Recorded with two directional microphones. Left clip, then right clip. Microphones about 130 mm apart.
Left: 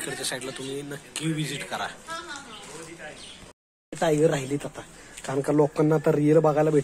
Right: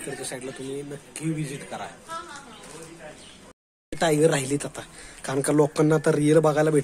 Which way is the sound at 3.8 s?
20° right (ahead or behind).